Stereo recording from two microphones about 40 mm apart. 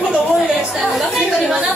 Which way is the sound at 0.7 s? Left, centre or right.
Centre.